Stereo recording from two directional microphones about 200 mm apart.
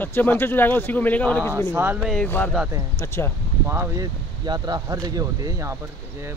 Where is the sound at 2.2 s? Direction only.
10° left (ahead or behind).